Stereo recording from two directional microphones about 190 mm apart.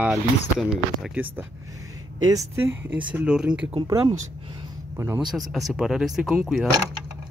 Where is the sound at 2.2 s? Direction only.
20° right (ahead or behind).